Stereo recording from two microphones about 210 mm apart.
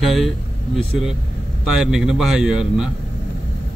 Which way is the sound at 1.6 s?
5° right (ahead or behind).